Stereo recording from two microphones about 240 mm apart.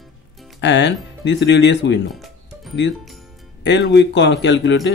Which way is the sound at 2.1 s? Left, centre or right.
Centre.